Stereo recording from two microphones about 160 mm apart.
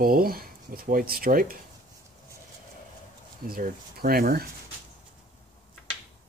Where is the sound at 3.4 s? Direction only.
65° right (ahead or behind).